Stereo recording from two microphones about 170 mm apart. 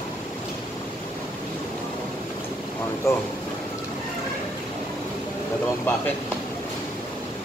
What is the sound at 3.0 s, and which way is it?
Speech, 15° left (ahead or behind).